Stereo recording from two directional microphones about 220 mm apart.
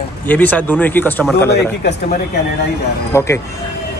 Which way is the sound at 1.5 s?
45° left (ahead or behind).